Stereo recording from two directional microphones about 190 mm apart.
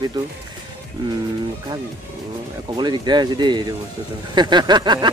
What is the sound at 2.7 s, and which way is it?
Speech, 25° right (ahead or behind).